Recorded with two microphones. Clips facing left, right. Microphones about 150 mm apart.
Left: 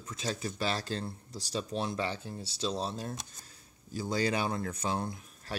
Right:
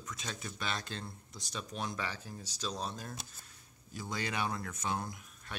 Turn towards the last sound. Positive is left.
turn(degrees=30)  # may be behind; listen again after turning